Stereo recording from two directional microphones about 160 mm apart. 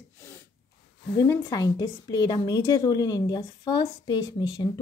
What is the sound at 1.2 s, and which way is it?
Speech, 20° left (ahead or behind).